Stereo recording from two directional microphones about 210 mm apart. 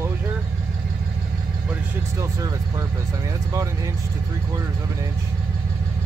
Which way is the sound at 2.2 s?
15° right (ahead or behind).